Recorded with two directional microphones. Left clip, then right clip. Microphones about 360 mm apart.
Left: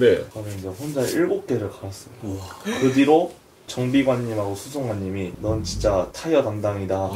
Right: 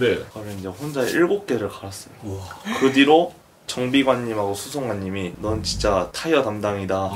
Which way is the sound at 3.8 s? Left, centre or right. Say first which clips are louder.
Right 1 dB; right.